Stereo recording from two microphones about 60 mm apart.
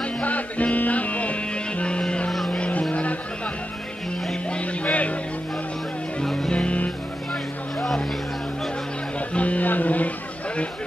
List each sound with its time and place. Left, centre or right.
0.0 s music: left
2.5 s vehicle: centre
2.9 s a sound: left
4.5 s music: left
6.2 s music: centre
6.5 s music: left
7.8 s vehicle: centre
9.3 s music: left